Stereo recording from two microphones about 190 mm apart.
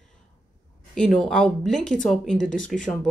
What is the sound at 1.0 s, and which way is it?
A woman's voice, 5° left (ahead or behind).